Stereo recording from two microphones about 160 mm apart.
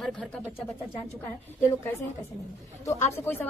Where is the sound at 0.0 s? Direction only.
Centre (ahead or behind).